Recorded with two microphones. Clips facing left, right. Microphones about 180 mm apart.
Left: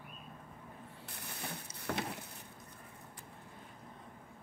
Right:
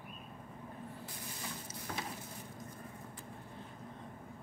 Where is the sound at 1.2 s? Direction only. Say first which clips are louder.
Left 4 dB; 65° left (ahead or behind).